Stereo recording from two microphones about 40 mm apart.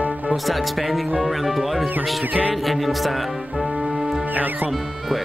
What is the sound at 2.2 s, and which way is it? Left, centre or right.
Music, right.